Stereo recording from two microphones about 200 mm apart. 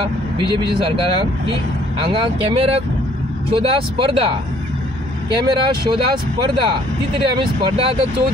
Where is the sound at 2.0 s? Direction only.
25° right (ahead or behind).